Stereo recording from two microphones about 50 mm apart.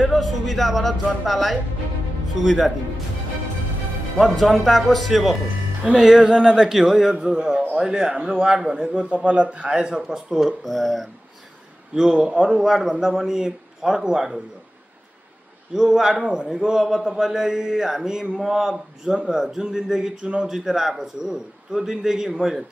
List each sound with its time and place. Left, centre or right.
0.0 s speech: centre
4.2 s speech: centre
5.8 s speech: centre
11.9 s speech: centre
15.7 s speech: centre